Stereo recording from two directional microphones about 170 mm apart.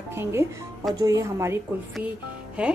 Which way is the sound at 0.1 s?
15° right (ahead or behind).